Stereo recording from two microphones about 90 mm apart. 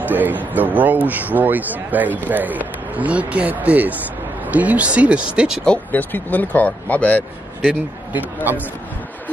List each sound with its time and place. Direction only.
0.0 s speech: 20° right (ahead or behind)
5.7 s speech: 20° left (ahead or behind)